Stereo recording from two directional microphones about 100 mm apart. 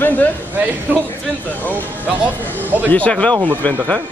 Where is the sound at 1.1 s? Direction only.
20° left (ahead or behind).